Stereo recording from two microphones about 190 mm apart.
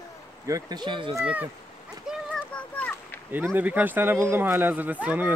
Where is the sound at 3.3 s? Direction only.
10° right (ahead or behind).